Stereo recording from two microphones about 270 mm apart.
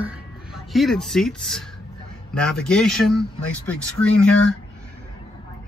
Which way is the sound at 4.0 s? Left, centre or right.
Right.